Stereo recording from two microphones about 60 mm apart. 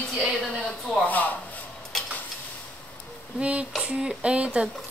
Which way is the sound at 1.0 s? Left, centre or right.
Left.